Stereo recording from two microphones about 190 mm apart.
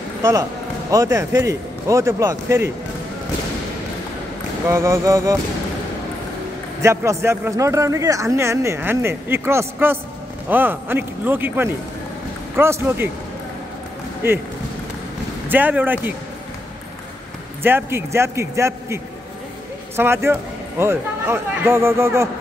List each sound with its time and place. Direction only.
0.2 s a man's voice: 15° right (ahead or behind)
4.6 s a man's voice: 15° right (ahead or behind)
6.8 s a man's voice: 15° right (ahead or behind)
14.2 s a man's voice: 10° right (ahead or behind)
15.4 s a man's voice: 10° right (ahead or behind)
17.6 s a man's voice: 10° right (ahead or behind)
20.0 s a man's voice: 10° right (ahead or behind)